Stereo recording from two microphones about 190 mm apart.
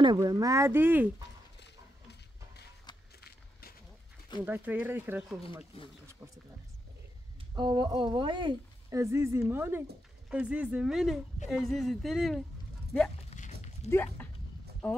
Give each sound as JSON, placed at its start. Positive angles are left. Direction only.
{"t": 0.0, "sound": "speech", "side_deg": -20}
{"t": 3.2, "sound": "a sound", "side_deg": 55}
{"t": 4.5, "sound": "speech", "side_deg": -10}
{"t": 5.7, "sound": "speech", "side_deg": 30}
{"t": 7.5, "sound": "speech", "side_deg": -25}
{"t": 13.3, "sound": "dog", "side_deg": 30}
{"t": 13.8, "sound": "speech", "side_deg": 10}